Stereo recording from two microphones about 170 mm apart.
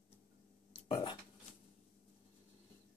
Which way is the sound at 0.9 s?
30° left (ahead or behind).